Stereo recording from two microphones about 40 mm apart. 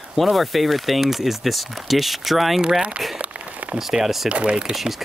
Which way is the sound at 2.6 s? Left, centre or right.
Centre.